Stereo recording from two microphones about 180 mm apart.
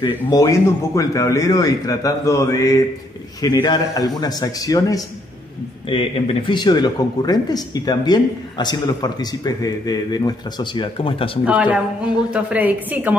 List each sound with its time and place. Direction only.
0.0 s speech: 20° left (ahead or behind)
11.4 s a woman's voice: 5° right (ahead or behind)